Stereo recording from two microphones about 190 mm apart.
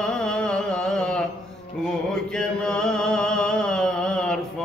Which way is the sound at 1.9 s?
5° left (ahead or behind).